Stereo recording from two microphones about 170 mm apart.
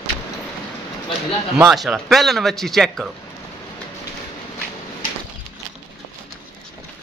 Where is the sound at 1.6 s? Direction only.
5° right (ahead or behind).